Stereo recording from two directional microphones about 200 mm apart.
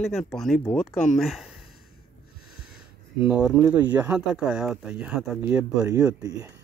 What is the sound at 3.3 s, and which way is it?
Speech, 5° right (ahead or behind).